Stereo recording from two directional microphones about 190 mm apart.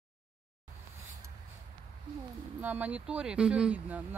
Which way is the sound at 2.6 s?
10° right (ahead or behind).